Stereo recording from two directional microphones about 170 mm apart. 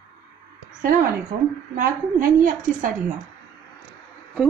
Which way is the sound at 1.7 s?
55° right (ahead or behind).